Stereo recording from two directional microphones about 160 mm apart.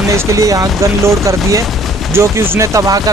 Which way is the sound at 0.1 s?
20° right (ahead or behind).